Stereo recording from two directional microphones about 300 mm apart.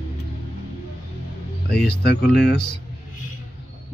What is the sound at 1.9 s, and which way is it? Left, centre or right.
Speech, left.